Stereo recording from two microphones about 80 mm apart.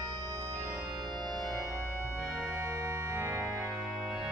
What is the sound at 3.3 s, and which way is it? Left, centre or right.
Music, centre.